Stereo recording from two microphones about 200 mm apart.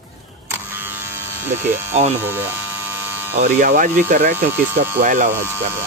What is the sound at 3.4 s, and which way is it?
Speech, 40° right (ahead or behind).